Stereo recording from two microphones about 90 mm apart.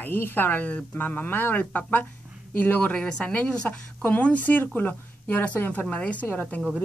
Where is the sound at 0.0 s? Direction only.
20° left (ahead or behind).